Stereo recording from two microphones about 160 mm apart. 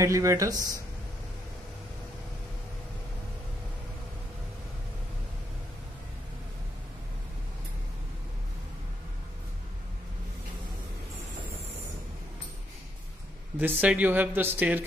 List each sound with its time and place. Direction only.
0.0 s speech: 20° right (ahead or behind)
13.6 s speech: 10° right (ahead or behind)